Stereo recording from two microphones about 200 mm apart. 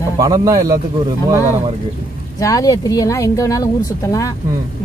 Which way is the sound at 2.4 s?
15° left (ahead or behind).